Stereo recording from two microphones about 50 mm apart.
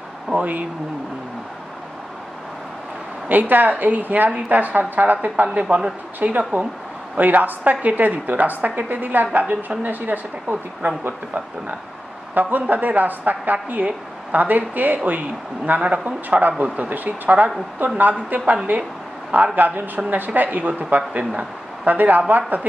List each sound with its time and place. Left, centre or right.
0.3 s a woman's voice: right
3.3 s a woman's voice: right
12.4 s a woman's voice: right
21.2 s speech: centre
21.8 s a woman's voice: right